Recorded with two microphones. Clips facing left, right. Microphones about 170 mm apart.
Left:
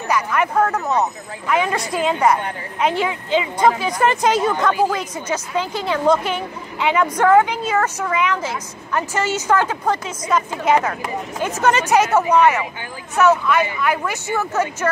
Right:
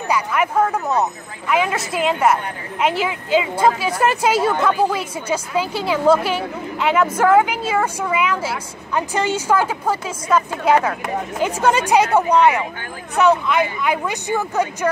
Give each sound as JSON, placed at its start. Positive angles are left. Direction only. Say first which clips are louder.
{"t": 0.1, "sound": "a woman's voice", "louder": "even", "side_deg": -10}